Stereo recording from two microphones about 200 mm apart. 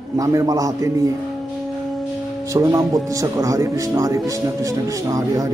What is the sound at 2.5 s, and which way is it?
Speech, 15° right (ahead or behind).